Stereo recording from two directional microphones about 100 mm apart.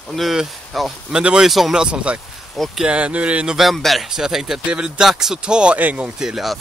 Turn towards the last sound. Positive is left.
turn(degrees=-5)  # may be behind; listen again after turning